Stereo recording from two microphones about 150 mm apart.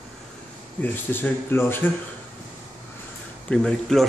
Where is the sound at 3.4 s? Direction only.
5° left (ahead or behind).